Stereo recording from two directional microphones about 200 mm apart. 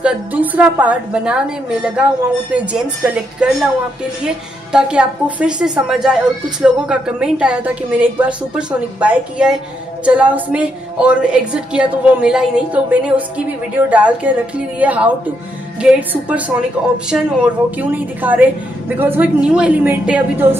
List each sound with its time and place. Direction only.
0.0 s a woman's voice: 10° right (ahead or behind)
2.5 s a woman's voice: 5° right (ahead or behind)
4.7 s a woman's voice: 5° right (ahead or behind)